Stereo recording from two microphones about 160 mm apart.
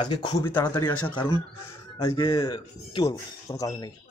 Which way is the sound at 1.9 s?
20° left (ahead or behind).